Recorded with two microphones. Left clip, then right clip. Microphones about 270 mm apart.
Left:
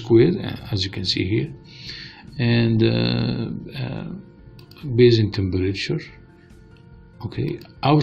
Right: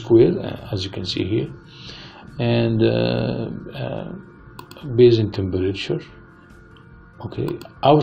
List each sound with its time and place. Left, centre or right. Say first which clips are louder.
0.0 s speech: right 2 dB; left
1.9 s a sound: left 3 dB; left
2.3 s speech: right 1 dB; left